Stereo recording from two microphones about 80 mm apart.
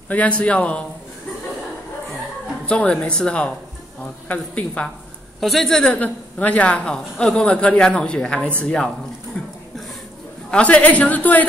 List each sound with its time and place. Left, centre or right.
0.1 s a man's voice: centre
2.6 s a man's voice: centre
5.4 s a woman's voice: centre
5.9 s a man's voice: centre